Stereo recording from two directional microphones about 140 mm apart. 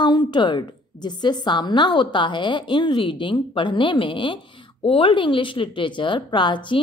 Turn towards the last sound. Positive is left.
turn(degrees=35)  # may be behind; listen again after turning